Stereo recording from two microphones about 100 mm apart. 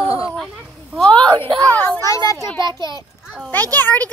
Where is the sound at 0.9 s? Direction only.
10° left (ahead or behind).